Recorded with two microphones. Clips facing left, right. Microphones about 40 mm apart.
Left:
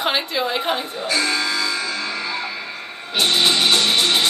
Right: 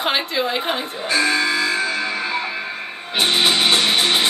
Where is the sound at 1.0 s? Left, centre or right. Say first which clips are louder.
Right 4 dB; right.